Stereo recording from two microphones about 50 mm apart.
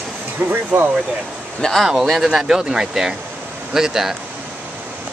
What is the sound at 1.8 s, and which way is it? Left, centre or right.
Speech, centre.